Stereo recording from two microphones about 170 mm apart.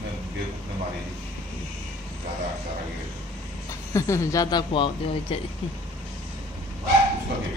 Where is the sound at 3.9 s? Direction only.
15° left (ahead or behind).